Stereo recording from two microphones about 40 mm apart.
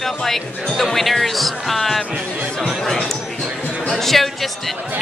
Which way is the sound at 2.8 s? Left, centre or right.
Centre.